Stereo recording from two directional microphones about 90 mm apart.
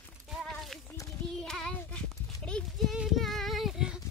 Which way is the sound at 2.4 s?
10° left (ahead or behind).